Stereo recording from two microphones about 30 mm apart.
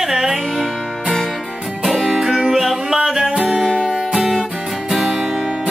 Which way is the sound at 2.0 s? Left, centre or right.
Centre.